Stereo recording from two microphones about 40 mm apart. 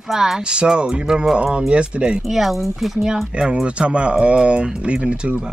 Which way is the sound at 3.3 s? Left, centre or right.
Right.